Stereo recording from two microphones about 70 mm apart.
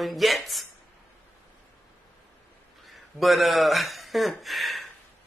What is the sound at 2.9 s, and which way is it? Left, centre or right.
Speech, centre.